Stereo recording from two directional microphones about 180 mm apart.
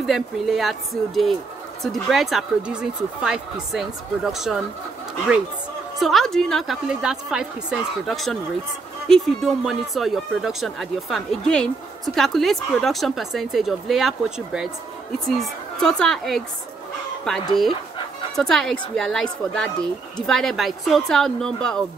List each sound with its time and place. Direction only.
0.0 s speech: centre (ahead or behind)
5.9 s speech: centre (ahead or behind)